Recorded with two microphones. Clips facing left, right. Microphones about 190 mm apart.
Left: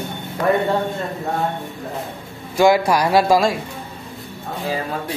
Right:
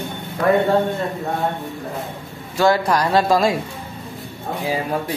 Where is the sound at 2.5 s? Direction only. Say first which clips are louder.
Left 2 dB; 10° left (ahead or behind).